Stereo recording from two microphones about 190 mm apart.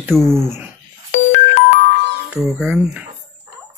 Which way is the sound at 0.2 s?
15° right (ahead or behind).